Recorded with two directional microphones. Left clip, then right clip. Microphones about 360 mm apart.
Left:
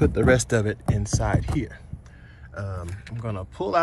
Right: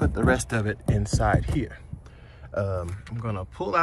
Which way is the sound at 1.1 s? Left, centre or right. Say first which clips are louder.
Right 3 dB; centre.